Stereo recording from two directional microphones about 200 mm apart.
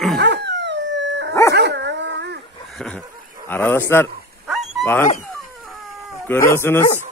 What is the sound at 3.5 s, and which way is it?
Speech, 10° left (ahead or behind).